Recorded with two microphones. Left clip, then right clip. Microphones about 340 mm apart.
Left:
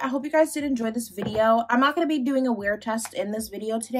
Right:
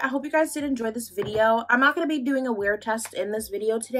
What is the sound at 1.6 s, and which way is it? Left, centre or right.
Speech, centre.